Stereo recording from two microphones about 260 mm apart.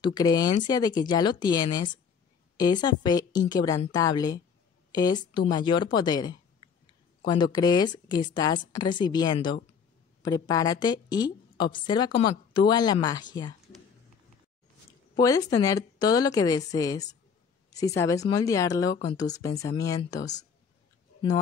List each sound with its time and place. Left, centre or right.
0.0 s a woman's voice: centre
6.6 s a sound: centre
7.2 s a woman's voice: centre
15.1 s a woman's voice: centre